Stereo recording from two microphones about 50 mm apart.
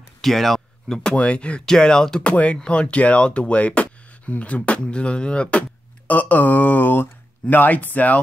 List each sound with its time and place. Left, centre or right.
0.2 s a sound: centre
1.1 s speech: left
2.3 s speech: left